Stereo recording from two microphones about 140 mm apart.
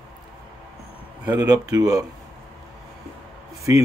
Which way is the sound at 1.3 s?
25° right (ahead or behind).